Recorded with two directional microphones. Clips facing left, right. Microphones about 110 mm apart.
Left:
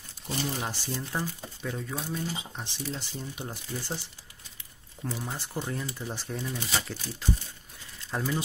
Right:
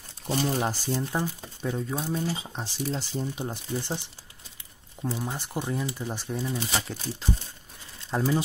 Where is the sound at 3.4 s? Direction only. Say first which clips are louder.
Right 5 dB; 25° right (ahead or behind).